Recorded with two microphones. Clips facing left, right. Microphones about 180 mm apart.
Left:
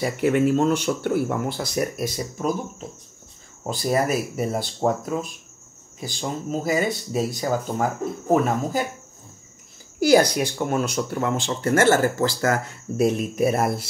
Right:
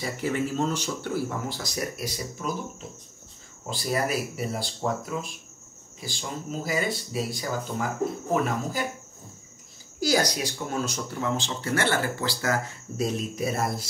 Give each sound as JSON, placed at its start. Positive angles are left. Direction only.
{"t": 0.0, "sound": "speech", "side_deg": 60}
{"t": 3.6, "sound": "speech", "side_deg": 45}
{"t": 9.9, "sound": "speech", "side_deg": 60}